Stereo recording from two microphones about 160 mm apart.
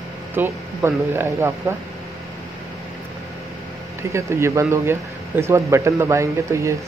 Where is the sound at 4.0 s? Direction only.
15° right (ahead or behind).